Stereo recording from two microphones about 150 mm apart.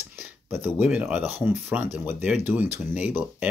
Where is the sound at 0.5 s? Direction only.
10° right (ahead or behind).